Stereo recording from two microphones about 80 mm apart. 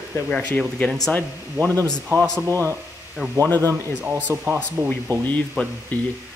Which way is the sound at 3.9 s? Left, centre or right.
Right.